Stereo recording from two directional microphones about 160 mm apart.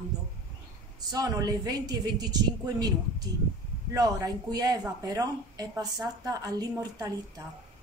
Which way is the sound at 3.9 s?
25° right (ahead or behind).